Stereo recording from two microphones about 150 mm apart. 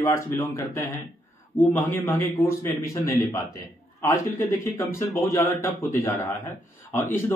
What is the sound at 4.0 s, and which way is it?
A man's voice, 20° left (ahead or behind).